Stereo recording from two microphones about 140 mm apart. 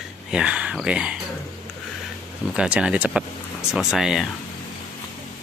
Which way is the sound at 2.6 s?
5° right (ahead or behind).